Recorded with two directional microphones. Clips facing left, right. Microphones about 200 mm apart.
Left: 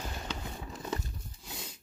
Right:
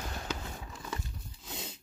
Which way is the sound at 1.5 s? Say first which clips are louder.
Right 2 dB; 25° right (ahead or behind).